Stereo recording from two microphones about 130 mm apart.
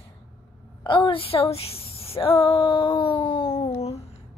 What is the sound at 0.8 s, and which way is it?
Speech, 40° left (ahead or behind).